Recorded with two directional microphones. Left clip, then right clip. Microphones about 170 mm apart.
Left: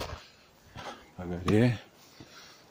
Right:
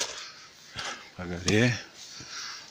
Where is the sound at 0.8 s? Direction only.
15° left (ahead or behind).